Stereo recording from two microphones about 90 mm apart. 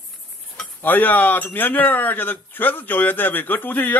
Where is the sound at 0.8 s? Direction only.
20° left (ahead or behind).